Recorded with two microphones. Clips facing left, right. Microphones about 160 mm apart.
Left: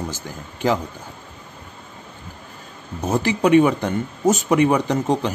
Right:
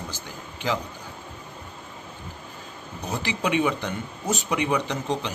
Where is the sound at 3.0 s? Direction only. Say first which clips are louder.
Left 9 dB; 45° left (ahead or behind).